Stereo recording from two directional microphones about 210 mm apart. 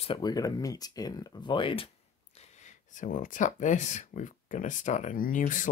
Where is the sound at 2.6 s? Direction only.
40° left (ahead or behind).